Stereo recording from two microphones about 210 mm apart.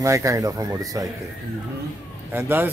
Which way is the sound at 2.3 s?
10° right (ahead or behind).